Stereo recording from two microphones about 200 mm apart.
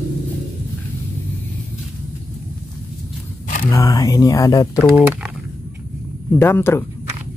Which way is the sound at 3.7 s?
15° left (ahead or behind).